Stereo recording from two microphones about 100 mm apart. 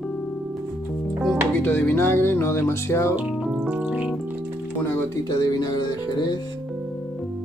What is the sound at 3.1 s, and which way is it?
Music, 15° right (ahead or behind).